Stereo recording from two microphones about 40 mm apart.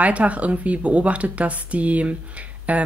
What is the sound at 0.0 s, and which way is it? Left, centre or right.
Speech, right.